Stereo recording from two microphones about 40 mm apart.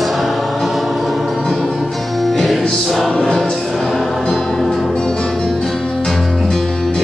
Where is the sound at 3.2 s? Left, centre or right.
Centre.